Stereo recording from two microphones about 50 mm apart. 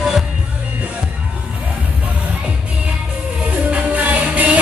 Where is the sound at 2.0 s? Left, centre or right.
Right.